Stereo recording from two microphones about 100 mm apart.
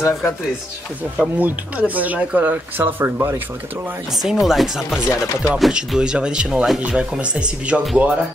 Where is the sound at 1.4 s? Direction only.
15° right (ahead or behind).